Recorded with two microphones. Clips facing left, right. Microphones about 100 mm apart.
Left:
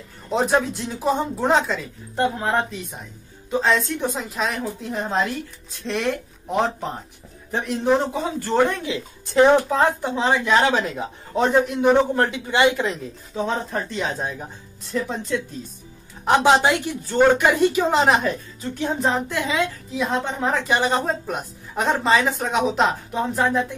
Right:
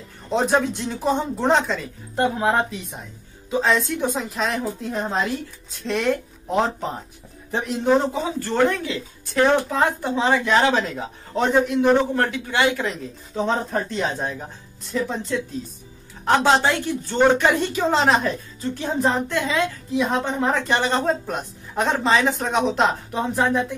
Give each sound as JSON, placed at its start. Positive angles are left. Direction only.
{"t": 0.3, "sound": "a woman's voice", "side_deg": 0}
{"t": 10.2, "sound": "a woman's voice", "side_deg": 0}
{"t": 10.7, "sound": "speech", "side_deg": 15}
{"t": 12.2, "sound": "a man's voice", "side_deg": 20}
{"t": 13.3, "sound": "a woman's voice", "side_deg": 0}
{"t": 16.3, "sound": "speech", "side_deg": 15}
{"t": 17.0, "sound": "speech", "side_deg": 5}
{"t": 18.8, "sound": "a woman's voice", "side_deg": 0}